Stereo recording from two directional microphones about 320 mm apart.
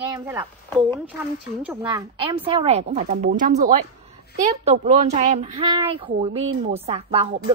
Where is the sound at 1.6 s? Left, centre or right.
Centre.